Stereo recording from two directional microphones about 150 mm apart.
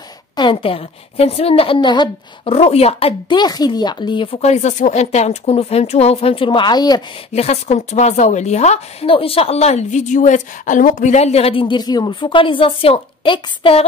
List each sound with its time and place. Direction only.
0.4 s speech: 35° left (ahead or behind)
3.3 s speech: 25° left (ahead or behind)
7.3 s a woman's voice: 45° left (ahead or behind)